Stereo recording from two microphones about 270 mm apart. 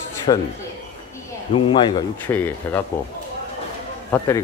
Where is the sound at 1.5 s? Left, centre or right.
Centre.